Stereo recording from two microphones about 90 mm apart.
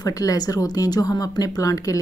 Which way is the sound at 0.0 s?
40° left (ahead or behind).